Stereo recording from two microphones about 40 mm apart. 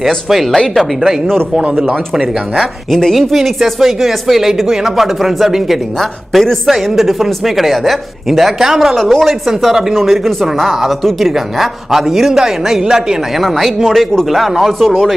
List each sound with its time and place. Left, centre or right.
0.0 s speech: centre
1.9 s speech: right
2.6 s speech: centre
5.9 s a woman's voice: centre
8.9 s a man's voice: centre
13.4 s speech: centre